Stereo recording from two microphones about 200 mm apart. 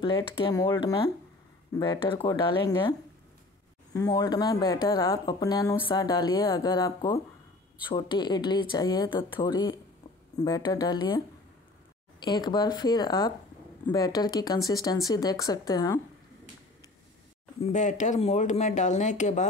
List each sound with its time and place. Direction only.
0.0 s speech: 20° left (ahead or behind)
17.6 s speech: 35° left (ahead or behind)